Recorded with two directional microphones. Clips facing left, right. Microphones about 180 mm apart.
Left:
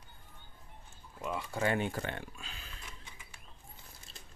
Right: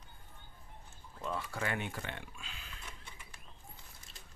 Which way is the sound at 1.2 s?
15° left (ahead or behind).